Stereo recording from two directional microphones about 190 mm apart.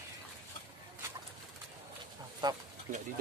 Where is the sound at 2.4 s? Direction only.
20° right (ahead or behind).